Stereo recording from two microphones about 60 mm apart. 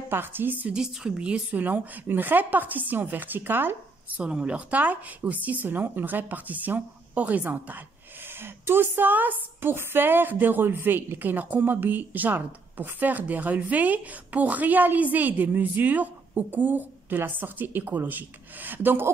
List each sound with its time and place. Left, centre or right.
0.1 s a woman's voice: right
0.7 s a woman's voice: centre
1.6 s a woman's voice: right
4.2 s speech: centre
8.4 s a woman's voice: right